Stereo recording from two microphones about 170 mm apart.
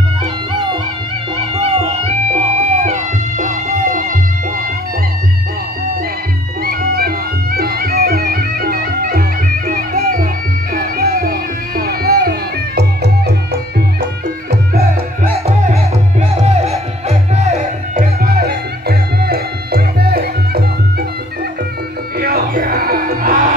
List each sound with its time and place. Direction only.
1.3 s music: 35° right (ahead or behind)
6.6 s music: 65° right (ahead or behind)
15.4 s music: 40° right (ahead or behind)
18.2 s music: 65° right (ahead or behind)
22.2 s music: 60° right (ahead or behind)